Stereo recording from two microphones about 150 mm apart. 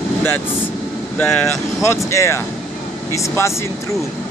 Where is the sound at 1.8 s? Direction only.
20° left (ahead or behind).